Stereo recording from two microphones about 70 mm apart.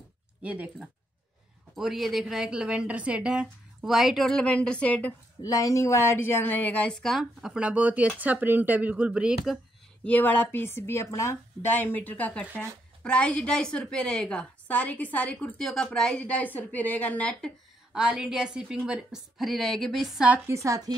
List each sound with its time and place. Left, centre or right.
0.4 s speech: centre
1.8 s a woman's voice: centre
5.4 s speech: left; by 7.0 s centre
7.0 s a woman's voice: centre
7.6 s speech: right
10.0 s speech: left
11.6 s a woman's voice: left; by 14.4 s centre
14.7 s a woman's voice: left
17.9 s a woman's voice: centre
20.4 s a woman's voice: right